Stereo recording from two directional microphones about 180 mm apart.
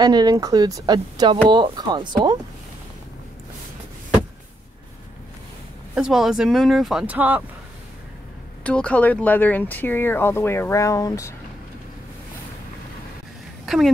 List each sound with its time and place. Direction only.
0.0 s speech: 20° right (ahead or behind)
5.9 s speech: 5° right (ahead or behind)
8.6 s speech: 5° left (ahead or behind)
13.7 s speech: centre (ahead or behind)